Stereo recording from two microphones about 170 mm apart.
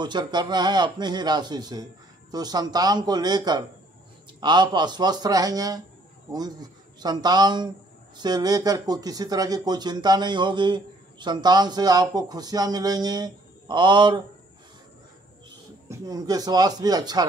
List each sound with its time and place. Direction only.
0.0 s speech: 25° right (ahead or behind)
15.9 s speech: 20° right (ahead or behind)